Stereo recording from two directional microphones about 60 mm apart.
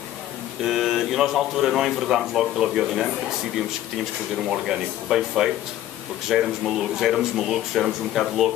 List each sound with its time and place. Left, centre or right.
0.7 s a man's voice: centre
4.5 s a man's voice: centre